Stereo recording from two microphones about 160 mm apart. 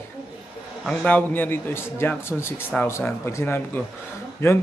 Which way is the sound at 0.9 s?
10° left (ahead or behind).